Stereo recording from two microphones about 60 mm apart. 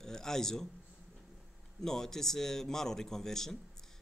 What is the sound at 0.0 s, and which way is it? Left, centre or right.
Speech, centre.